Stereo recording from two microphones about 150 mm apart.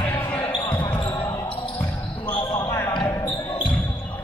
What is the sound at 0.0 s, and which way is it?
Basketball bounce, 15° left (ahead or behind).